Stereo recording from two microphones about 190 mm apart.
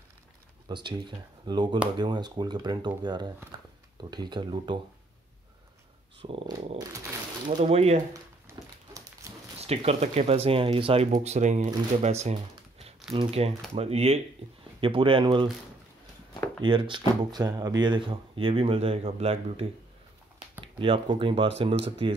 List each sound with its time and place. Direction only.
0.7 s speech: 25° right (ahead or behind)
3.5 s a sound: 25° right (ahead or behind)
4.1 s speech: 25° right (ahead or behind)
6.2 s speech: 30° right (ahead or behind)
9.6 s speech: 35° right (ahead or behind)
16.6 s speech: 25° right (ahead or behind)